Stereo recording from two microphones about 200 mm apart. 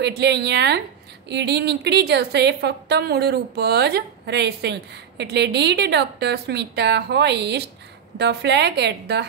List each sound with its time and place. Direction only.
0.0 s a woman's voice: 60° right (ahead or behind)